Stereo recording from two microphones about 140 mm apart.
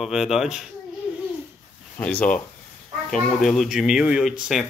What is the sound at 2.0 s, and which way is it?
Speech, 10° left (ahead or behind).